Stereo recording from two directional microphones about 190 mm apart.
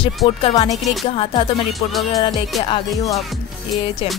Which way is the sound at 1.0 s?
25° left (ahead or behind).